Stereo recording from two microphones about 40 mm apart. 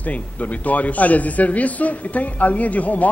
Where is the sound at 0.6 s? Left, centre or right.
Left.